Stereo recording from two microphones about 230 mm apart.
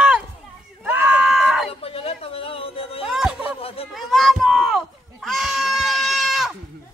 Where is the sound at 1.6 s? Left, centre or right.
Left.